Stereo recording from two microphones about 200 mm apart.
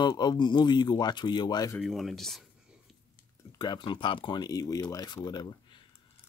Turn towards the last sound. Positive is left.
turn(degrees=20)  # may be behind; listen again after turning